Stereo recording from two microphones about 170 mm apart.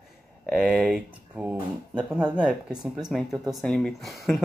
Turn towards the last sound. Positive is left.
turn(degrees=0)  # may be behind; listen again after turning